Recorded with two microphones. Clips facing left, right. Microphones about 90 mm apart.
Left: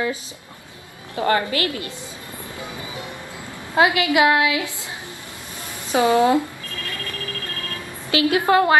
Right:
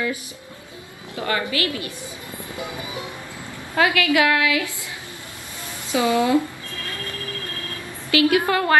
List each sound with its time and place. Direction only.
1.1 s a woman's voice: 35° left (ahead or behind)
2.5 s speech: 20° right (ahead or behind)
3.7 s a woman's voice: 20° left (ahead or behind)
5.9 s a woman's voice: 30° left (ahead or behind)
8.1 s a woman's voice: 25° left (ahead or behind)